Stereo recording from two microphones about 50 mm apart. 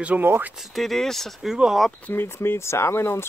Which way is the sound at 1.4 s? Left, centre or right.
Centre.